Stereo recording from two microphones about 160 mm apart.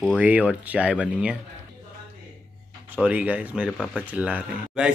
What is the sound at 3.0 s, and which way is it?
Speech, 10° right (ahead or behind).